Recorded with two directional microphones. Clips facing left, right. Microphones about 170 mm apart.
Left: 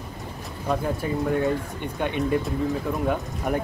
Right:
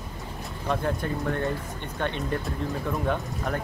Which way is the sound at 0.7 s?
5° left (ahead or behind).